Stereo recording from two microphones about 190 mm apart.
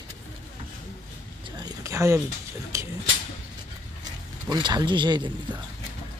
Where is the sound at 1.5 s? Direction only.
20° right (ahead or behind).